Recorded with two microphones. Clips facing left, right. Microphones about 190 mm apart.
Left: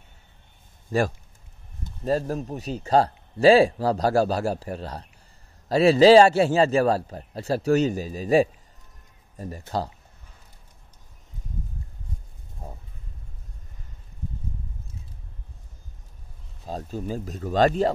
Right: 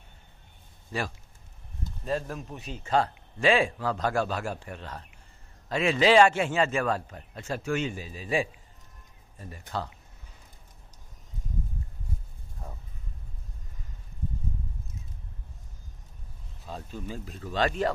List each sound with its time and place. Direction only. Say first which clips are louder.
0.9 s speech: left 10 dB; 45° left (ahead or behind)
12.6 s a sound: left 4 dB; 30° left (ahead or behind)
16.6 s speech: left 7 dB; 40° left (ahead or behind)